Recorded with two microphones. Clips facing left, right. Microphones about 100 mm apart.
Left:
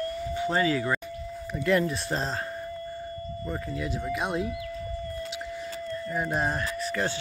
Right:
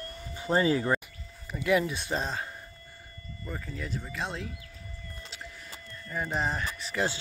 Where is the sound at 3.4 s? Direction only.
5° left (ahead or behind).